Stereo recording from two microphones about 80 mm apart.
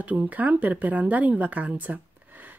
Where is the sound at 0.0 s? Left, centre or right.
Right.